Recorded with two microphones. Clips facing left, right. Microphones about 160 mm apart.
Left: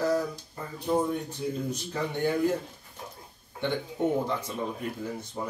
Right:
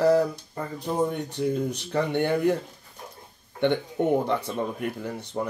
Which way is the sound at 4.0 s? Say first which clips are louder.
Right 3 dB; 65° right (ahead or behind).